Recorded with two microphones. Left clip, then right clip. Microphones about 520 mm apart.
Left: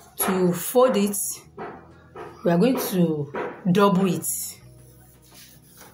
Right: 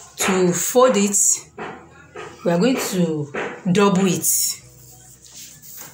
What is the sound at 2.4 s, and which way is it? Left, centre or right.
Speech, left.